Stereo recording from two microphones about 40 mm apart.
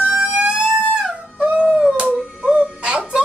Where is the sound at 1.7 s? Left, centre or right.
Centre.